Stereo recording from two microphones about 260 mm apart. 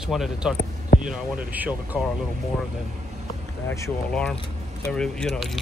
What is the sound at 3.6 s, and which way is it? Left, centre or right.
Speech, centre.